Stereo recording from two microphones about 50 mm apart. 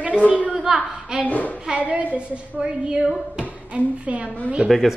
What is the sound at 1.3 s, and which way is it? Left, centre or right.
Speech, left.